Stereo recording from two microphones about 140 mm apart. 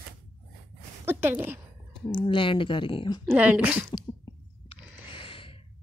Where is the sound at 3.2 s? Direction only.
10° right (ahead or behind).